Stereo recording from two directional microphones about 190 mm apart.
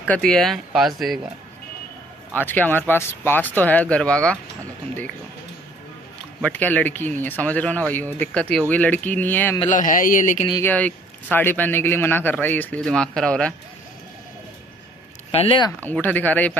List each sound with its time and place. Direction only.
0.0 s speech: 5° left (ahead or behind)
2.3 s speech: 10° left (ahead or behind)
6.4 s speech: 10° left (ahead or behind)
9.7 s a man's voice: 45° left (ahead or behind)
10.6 s speech: 10° left (ahead or behind)
15.3 s speech: 30° left (ahead or behind)
15.8 s speech: 10° left (ahead or behind)